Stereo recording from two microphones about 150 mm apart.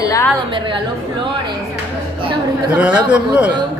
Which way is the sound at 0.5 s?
35° right (ahead or behind).